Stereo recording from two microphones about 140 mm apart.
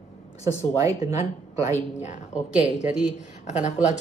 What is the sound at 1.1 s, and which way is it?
Speech, 55° left (ahead or behind).